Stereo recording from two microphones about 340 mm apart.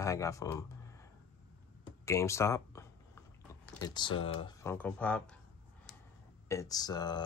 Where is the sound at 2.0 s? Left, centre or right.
Centre.